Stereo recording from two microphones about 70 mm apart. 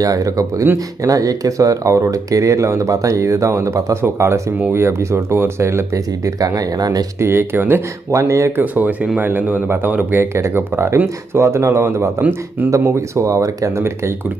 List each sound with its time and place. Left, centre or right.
0.0 s speech: right
6.4 s speech: right
7.2 s speech: right
8.1 s speech: right
8.5 s a man's voice: right
10.3 s speech: right